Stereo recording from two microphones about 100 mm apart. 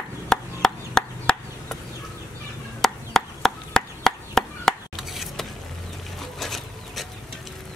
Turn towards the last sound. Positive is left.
turn(degrees=0)  # may be behind; listen again after turning